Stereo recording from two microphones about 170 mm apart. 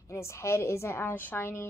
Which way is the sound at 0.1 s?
15° left (ahead or behind).